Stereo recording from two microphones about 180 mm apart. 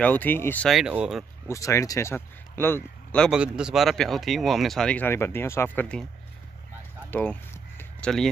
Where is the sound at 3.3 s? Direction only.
5° right (ahead or behind).